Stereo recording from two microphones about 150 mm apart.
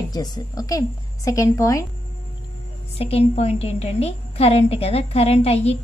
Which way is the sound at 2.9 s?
40° left (ahead or behind).